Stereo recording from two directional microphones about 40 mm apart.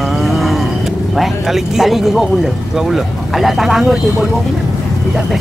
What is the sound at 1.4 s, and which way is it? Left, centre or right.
Speech, centre.